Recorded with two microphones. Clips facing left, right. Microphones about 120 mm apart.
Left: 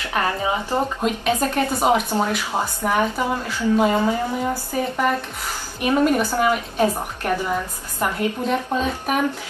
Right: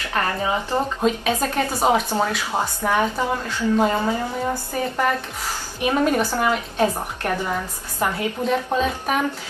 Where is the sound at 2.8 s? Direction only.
5° left (ahead or behind).